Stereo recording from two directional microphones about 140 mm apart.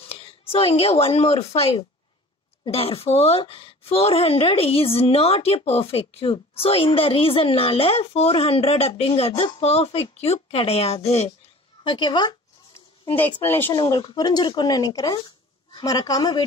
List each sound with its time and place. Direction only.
0.0 s a woman's voice: 45° left (ahead or behind)
11.8 s a woman's voice: 35° left (ahead or behind)
12.7 s a sound: 15° left (ahead or behind)
13.4 s speech: 15° left (ahead or behind)
13.7 s speech: 30° left (ahead or behind)